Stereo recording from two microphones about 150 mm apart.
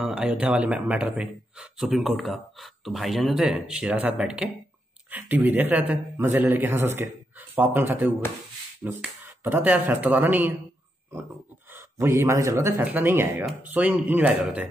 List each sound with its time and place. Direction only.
0.0 s a man's voice: 5° right (ahead or behind)
11.7 s a man's voice: 15° right (ahead or behind)